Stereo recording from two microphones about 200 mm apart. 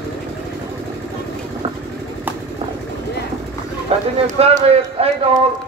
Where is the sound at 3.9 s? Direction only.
30° right (ahead or behind).